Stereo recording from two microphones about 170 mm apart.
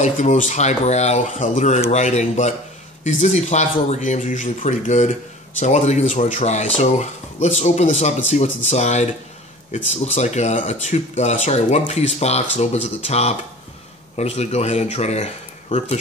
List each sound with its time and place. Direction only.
0.0 s speech: 45° left (ahead or behind)